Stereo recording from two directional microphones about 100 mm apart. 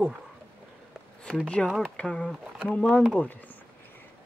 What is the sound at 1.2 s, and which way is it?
Speech, 10° left (ahead or behind).